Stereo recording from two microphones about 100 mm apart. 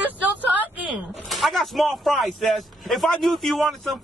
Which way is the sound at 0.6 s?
15° right (ahead or behind).